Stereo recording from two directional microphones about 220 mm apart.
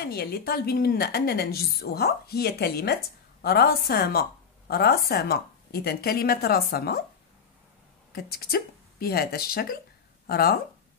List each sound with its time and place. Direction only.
0.0 s a woman's voice: 45° left (ahead or behind)
8.1 s speech: 45° left (ahead or behind)